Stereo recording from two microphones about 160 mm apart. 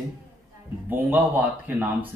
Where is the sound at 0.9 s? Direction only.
10° right (ahead or behind).